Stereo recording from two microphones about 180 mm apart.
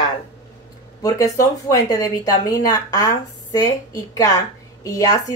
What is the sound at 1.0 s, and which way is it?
Speech, 20° left (ahead or behind).